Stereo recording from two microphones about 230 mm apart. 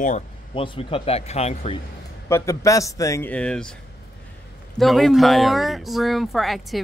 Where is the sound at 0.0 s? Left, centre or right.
Left.